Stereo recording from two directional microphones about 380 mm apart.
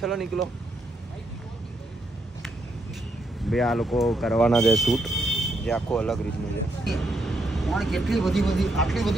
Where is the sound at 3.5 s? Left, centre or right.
Centre.